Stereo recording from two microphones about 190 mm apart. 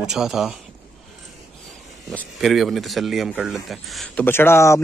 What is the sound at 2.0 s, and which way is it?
Speech, centre (ahead or behind).